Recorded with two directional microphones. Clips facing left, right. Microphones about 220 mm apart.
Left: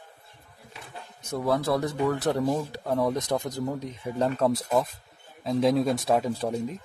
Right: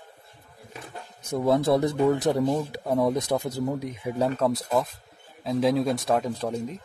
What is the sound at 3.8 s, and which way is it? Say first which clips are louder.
Speech: right 1 dB; 10° right (ahead or behind).